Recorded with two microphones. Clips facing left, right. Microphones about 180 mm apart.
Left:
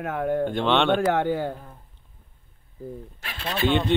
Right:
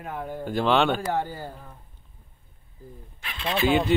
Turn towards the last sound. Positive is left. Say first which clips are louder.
# even
turn(degrees=-5)  # may be behind; listen again after turning